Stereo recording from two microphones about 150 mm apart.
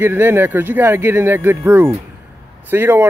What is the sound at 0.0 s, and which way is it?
Speech, 15° right (ahead or behind).